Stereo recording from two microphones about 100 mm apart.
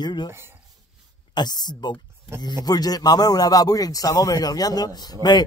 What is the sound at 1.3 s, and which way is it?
Speech, 45° left (ahead or behind).